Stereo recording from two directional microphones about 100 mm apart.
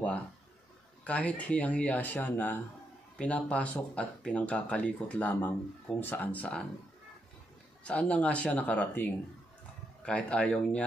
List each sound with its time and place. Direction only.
1.0 s speech: 15° left (ahead or behind)
7.8 s speech: 15° left (ahead or behind)